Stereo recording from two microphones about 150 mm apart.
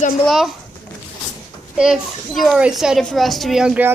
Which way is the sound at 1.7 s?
5° right (ahead or behind).